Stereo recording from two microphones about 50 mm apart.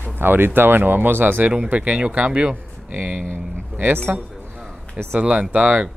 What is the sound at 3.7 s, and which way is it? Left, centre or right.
Speech, right.